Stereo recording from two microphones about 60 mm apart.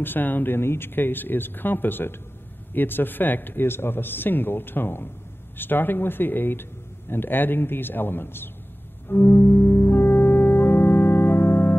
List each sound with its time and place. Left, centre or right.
0.0 s a man's voice: left
9.1 s music: left